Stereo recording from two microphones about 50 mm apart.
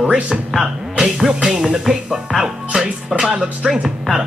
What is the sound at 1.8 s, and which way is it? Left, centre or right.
Speech, centre.